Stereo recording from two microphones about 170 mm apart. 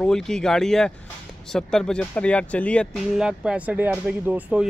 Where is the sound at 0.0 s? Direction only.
5° left (ahead or behind).